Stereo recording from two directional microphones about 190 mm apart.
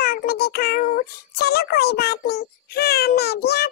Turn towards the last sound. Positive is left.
turn(degrees=60)  # may be behind; listen again after turning